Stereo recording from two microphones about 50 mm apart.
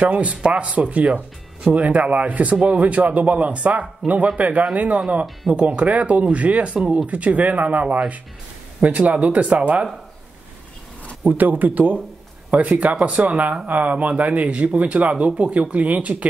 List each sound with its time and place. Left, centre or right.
0.0 s speech: right
11.2 s speech: right
12.9 s speech: centre
13.2 s speech: right